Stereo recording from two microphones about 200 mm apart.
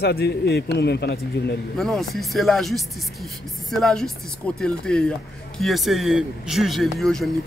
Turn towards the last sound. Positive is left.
turn(degrees=0)  # may be behind; listen again after turning